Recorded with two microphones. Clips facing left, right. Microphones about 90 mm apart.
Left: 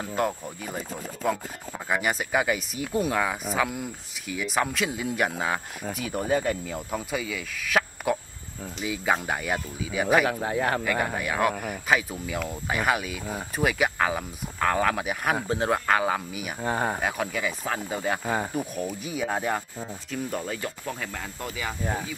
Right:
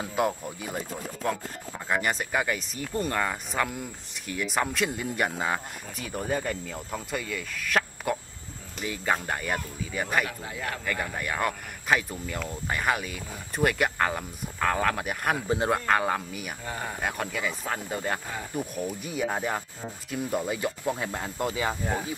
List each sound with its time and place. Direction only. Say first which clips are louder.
0.0 s speech: even; 5° right (ahead or behind)
10.2 s speech: left 9 dB; 50° left (ahead or behind)
11.1 s speech: left 4 dB; 5° left (ahead or behind)
16.6 s speech: left 10 dB; 50° left (ahead or behind)
17.0 s speech: left 2 dB; centre (ahead or behind)
20.1 s speech: right 3 dB; 10° right (ahead or behind); by 21.7 s 25° right (ahead or behind)